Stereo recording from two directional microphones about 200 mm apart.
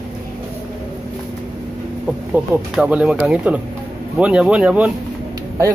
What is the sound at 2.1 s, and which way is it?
A woman's voice, 5° right (ahead or behind).